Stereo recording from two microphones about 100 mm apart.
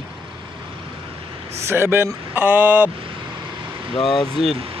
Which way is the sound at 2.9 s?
60° right (ahead or behind).